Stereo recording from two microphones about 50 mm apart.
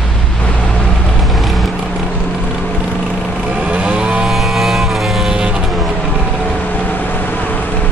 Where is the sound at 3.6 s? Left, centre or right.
Right.